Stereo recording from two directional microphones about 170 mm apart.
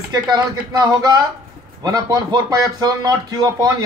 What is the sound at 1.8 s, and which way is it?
Speech, 20° right (ahead or behind).